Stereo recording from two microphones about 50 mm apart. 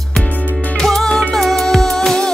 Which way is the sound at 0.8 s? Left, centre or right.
Centre.